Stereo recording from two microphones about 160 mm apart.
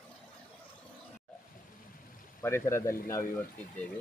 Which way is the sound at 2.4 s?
15° left (ahead or behind).